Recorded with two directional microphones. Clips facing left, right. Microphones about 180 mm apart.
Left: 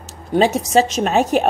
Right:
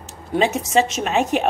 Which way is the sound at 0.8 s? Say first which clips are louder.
Left 3 dB; 35° left (ahead or behind).